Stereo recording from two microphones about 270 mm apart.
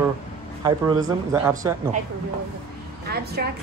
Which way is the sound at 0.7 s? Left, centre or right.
Centre.